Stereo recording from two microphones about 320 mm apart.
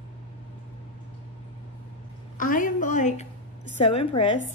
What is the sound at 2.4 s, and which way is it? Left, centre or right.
Speech, left.